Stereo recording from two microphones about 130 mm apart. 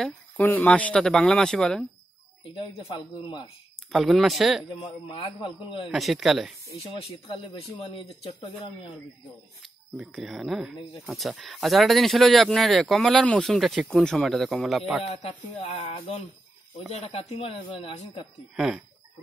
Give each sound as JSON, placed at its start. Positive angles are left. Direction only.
{"t": 0.0, "sound": "speech", "side_deg": 10}
{"t": 2.5, "sound": "speech", "side_deg": 40}
{"t": 3.9, "sound": "speech", "side_deg": 0}
{"t": 5.0, "sound": "speech", "side_deg": 40}
{"t": 5.9, "sound": "speech", "side_deg": 0}
{"t": 6.8, "sound": "speech", "side_deg": 50}
{"t": 9.6, "sound": "speech", "side_deg": 0}
{"t": 15.0, "sound": "speech", "side_deg": 50}